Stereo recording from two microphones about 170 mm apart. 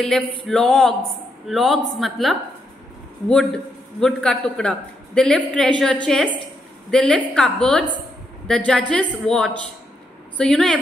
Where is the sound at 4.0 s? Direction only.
5° left (ahead or behind).